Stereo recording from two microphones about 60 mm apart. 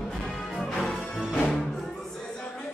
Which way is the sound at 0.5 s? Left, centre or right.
Centre.